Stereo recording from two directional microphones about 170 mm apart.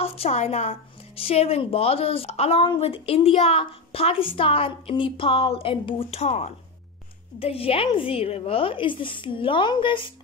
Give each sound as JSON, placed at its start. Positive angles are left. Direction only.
{"t": 0.0, "sound": "a woman's voice", "side_deg": 35}